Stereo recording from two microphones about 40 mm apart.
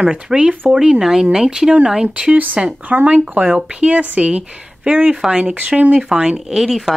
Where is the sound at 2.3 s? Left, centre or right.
Right.